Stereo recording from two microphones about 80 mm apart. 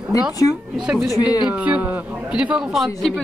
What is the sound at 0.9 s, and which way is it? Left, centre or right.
Speech, centre.